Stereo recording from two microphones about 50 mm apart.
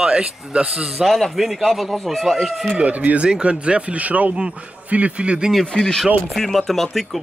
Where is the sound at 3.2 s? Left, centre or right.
Centre.